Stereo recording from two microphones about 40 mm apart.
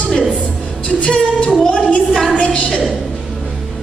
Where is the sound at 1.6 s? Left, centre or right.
Left.